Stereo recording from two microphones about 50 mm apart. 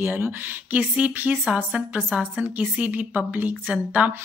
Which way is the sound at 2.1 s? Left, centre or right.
Right.